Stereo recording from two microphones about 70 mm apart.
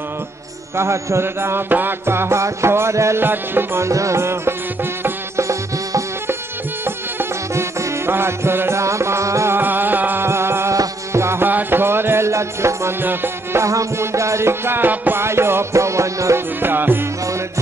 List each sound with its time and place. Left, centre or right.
0.7 s music: right
3.9 s music: right
8.1 s music: right
9.6 s music: right
11.4 s music: right
13.0 s music: right
13.7 s music: right
16.6 s music: right